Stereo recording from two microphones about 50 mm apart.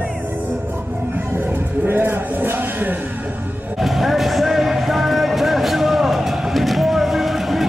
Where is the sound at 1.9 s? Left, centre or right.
Right.